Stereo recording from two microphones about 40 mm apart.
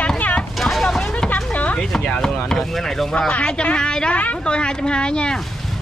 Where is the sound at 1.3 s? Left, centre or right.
Left.